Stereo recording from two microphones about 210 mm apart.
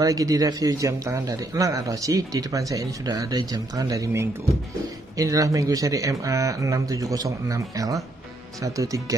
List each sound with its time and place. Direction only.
0.0 s speech: 15° right (ahead or behind)